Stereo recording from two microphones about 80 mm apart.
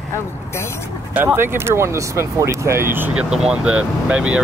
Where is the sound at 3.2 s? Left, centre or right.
Centre.